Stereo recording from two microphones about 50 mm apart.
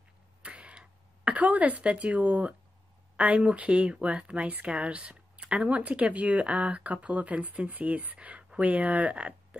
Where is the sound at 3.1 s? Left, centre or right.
Right.